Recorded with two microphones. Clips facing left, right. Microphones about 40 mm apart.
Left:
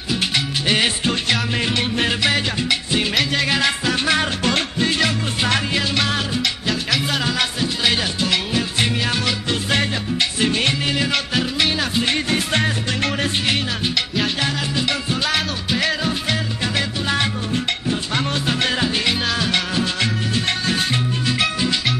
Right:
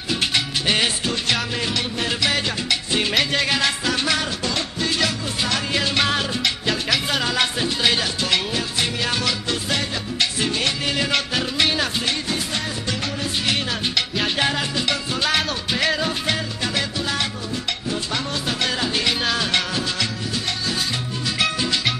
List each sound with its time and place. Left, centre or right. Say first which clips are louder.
0.1 s music: left 1 dB; centre
2.0 s music: left 2 dB; centre
5.8 s music: even; centre; by 10.7 s left
10.9 s music: left 1 dB; centre
12.1 s music: left 4 dB; left
14.9 s music: even; centre
18.1 s music: left 5 dB; left
19.0 s music: left 1 dB; centre
21.4 s music: right 1 dB; centre